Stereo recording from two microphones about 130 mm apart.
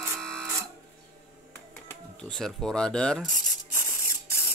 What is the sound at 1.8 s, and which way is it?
Speech, 5° left (ahead or behind).